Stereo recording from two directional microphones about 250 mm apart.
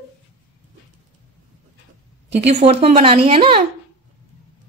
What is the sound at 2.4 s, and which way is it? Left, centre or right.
Speech, right.